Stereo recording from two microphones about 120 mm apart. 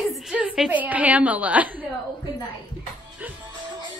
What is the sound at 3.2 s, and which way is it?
Music, 15° right (ahead or behind).